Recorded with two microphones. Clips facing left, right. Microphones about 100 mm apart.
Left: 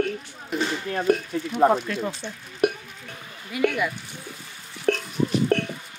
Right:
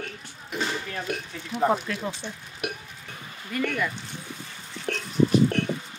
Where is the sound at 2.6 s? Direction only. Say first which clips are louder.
Left 10 dB; 40° left (ahead or behind).